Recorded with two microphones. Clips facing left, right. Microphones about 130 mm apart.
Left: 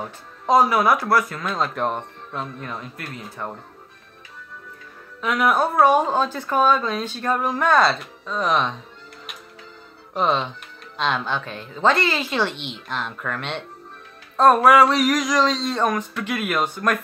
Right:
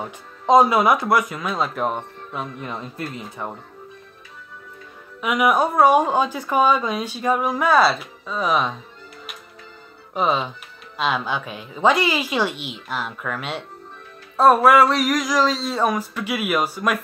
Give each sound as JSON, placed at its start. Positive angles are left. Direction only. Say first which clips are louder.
{"t": 0.5, "sound": "speech", "louder": "right 3 dB", "side_deg": -20}
{"t": 1.3, "sound": "music", "louder": "right 1 dB", "side_deg": -5}
{"t": 2.7, "sound": "speech", "louder": "right 3 dB", "side_deg": -30}
{"t": 3.4, "sound": "a woman's voice", "louder": "even", "side_deg": -10}
{"t": 5.2, "sound": "a woman's voice", "louder": "right 1 dB", "side_deg": -10}
{"t": 10.1, "sound": "music", "louder": "even", "side_deg": -5}
{"t": 11.0, "sound": "a woman's voice", "louder": "right 1 dB", "side_deg": -5}
{"t": 14.3, "sound": "music", "louder": "even", "side_deg": -5}